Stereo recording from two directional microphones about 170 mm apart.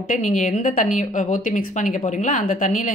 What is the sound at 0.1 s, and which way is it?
A woman's voice, 45° left (ahead or behind).